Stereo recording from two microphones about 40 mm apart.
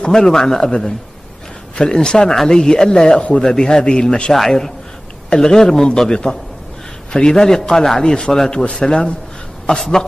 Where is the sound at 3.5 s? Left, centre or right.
Centre.